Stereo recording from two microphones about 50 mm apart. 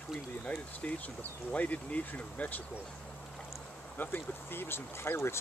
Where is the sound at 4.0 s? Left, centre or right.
Left.